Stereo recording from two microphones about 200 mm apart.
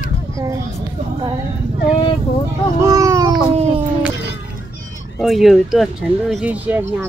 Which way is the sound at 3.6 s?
30° right (ahead or behind).